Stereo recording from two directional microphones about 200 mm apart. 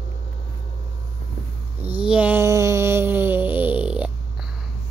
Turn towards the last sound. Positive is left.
turn(degrees=-5)  # may be behind; listen again after turning